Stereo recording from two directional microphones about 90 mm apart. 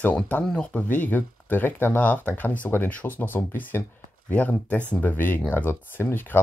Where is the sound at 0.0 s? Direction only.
15° left (ahead or behind).